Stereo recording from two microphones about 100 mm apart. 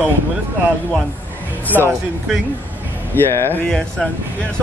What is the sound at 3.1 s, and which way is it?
Speech, 20° left (ahead or behind).